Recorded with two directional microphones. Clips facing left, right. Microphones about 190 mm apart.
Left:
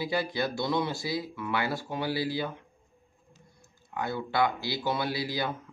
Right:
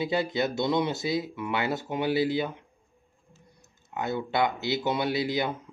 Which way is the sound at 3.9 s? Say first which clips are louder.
Right 2 dB; 20° right (ahead or behind).